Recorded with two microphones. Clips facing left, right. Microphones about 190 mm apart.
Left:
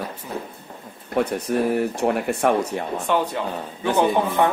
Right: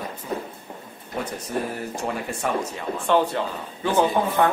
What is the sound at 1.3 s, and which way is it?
Speech, 65° left (ahead or behind).